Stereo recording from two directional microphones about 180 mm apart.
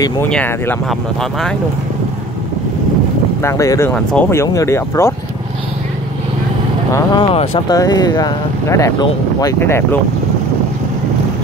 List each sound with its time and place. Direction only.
0.3 s speech: 10° left (ahead or behind)
3.4 s speech: 15° left (ahead or behind)
3.9 s speech: 5° left (ahead or behind)
6.9 s speech: 30° left (ahead or behind); by 9.9 s 10° left (ahead or behind)